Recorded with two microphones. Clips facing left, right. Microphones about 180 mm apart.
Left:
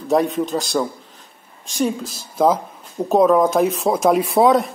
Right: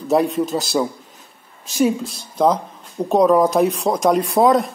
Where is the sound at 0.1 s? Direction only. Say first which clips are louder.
Right 1 dB; centre (ahead or behind).